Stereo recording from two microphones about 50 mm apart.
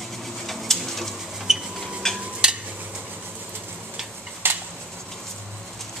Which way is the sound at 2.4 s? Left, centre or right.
Centre.